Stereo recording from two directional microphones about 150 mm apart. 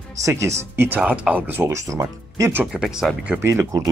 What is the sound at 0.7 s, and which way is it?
Speech, 10° right (ahead or behind).